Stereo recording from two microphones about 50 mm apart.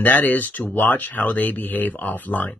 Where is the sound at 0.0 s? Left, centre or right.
Left.